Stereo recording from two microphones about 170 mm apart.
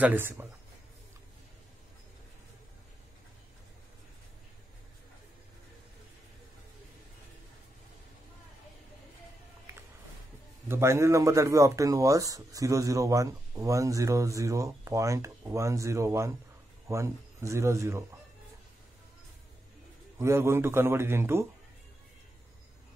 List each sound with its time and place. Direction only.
0.0 s a man's voice: 10° right (ahead or behind)
10.7 s speech: 15° right (ahead or behind)
20.2 s a man's voice: 15° right (ahead or behind)